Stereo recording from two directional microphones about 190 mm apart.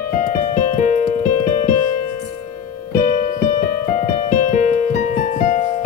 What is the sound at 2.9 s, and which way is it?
Keyboard, 40° left (ahead or behind).